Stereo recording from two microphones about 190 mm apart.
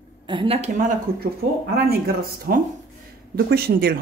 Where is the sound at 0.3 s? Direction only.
30° right (ahead or behind).